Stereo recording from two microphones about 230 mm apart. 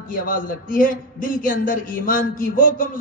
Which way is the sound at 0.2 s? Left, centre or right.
Left.